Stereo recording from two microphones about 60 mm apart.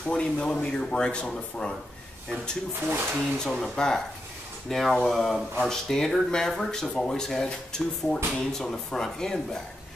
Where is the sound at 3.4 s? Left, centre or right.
Centre.